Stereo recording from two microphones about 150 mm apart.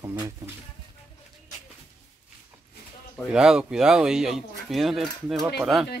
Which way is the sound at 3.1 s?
5° right (ahead or behind).